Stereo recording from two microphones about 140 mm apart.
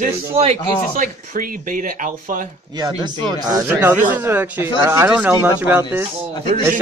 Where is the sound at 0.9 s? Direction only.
85° right.